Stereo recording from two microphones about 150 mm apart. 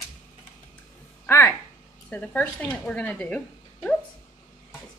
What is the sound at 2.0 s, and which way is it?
Speech, 10° left (ahead or behind).